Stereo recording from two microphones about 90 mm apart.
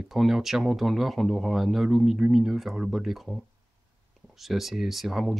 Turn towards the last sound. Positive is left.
turn(degrees=0)  # may be behind; listen again after turning